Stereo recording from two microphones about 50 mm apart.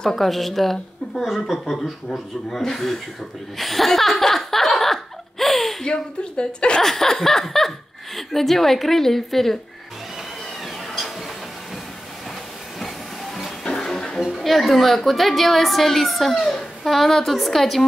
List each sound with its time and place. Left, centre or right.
0.0 s a woman's voice: centre
3.5 s laughter: centre
5.9 s speech: centre
6.8 s a woman's voice: centre
12.7 s hiss: centre
13.7 s music: centre
14.2 s a woman's voice: centre